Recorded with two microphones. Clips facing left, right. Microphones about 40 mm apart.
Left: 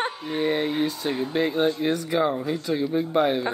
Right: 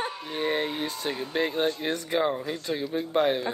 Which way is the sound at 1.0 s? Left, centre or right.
Left.